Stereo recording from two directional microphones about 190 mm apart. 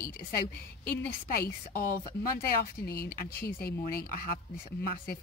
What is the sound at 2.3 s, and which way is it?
Speech, 55° left (ahead or behind).